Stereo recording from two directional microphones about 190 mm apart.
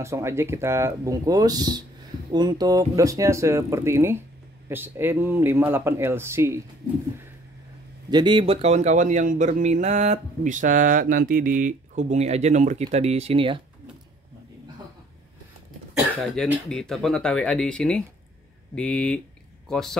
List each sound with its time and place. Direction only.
0.0 s speech: 15° right (ahead or behind)
8.1 s a man's voice: 25° right (ahead or behind)
16.2 s speech: centre (ahead or behind)